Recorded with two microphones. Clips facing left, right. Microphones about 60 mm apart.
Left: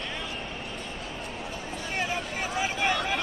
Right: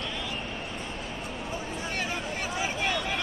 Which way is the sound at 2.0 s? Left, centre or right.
Centre.